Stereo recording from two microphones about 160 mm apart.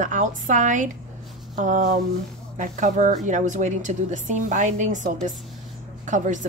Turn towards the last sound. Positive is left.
turn(degrees=-50)  # may be behind; listen again after turning